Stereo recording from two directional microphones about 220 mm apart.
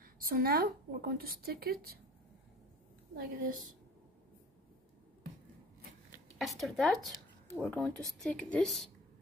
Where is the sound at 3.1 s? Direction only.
40° right (ahead or behind).